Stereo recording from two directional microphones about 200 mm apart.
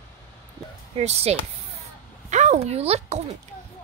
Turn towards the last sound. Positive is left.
turn(degrees=-30)  # may be behind; listen again after turning